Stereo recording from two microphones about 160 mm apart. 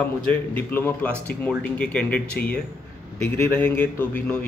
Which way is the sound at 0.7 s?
10° left (ahead or behind).